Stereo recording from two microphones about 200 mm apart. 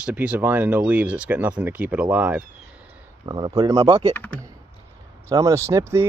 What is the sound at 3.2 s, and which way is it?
Speech, 20° right (ahead or behind).